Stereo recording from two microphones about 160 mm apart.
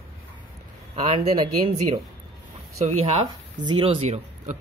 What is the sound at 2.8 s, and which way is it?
Speech, 40° right (ahead or behind).